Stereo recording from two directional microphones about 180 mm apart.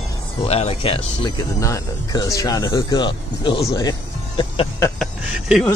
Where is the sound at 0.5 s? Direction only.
35° left (ahead or behind).